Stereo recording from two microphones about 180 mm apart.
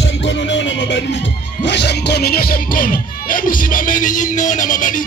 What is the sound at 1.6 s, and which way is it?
Speech, 70° left (ahead or behind).